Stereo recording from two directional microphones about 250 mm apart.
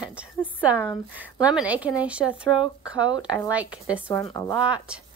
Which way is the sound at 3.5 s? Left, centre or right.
Centre.